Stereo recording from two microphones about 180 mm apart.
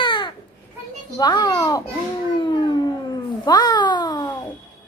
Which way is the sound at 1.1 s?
25° left (ahead or behind).